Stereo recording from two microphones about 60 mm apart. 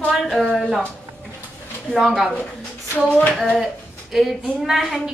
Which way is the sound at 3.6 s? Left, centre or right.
Centre.